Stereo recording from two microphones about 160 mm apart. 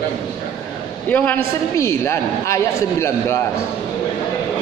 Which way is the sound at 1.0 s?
10° left (ahead or behind).